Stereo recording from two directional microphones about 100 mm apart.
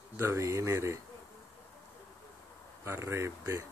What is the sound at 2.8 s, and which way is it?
Speech, 25° right (ahead or behind).